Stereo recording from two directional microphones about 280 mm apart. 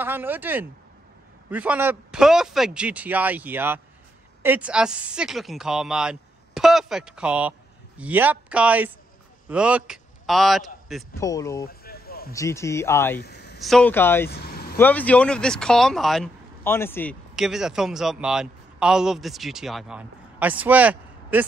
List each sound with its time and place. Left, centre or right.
0.0 s a man's voice: centre
11.1 s speech: centre
11.6 s a sound: left
12.3 s speech: centre
13.2 s a sound: left
13.6 s speech: centre
14.3 s vehicle: left
14.8 s speech: centre